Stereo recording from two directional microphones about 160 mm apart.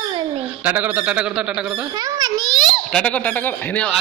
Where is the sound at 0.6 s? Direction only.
10° right (ahead or behind).